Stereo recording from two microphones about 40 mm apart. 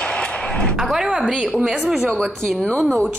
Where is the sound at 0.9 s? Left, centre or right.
Centre.